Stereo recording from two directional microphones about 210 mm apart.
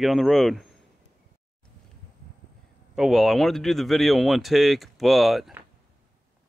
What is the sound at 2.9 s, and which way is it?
Speech, centre (ahead or behind).